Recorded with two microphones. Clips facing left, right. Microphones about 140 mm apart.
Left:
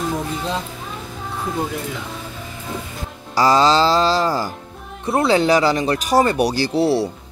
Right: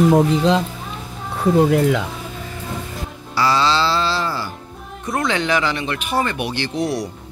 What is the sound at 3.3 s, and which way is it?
Speech, 40° left (ahead or behind).